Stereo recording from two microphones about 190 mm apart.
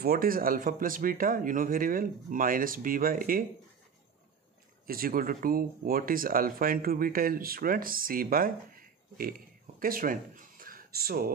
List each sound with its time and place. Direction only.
0.0 s speech: 50° right (ahead or behind)
4.8 s speech: 50° right (ahead or behind)